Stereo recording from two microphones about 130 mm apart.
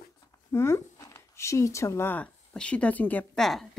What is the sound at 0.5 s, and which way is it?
Speech, 20° left (ahead or behind).